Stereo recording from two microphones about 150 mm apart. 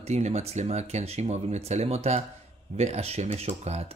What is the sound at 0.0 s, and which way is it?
Speech, 45° right (ahead or behind).